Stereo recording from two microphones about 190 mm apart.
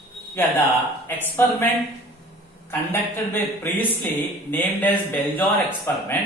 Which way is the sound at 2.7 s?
10° left (ahead or behind).